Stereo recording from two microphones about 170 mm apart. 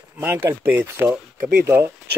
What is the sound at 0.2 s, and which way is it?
Speech, 15° right (ahead or behind).